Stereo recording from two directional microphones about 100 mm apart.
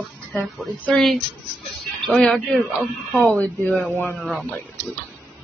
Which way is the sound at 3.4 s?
15° left (ahead or behind).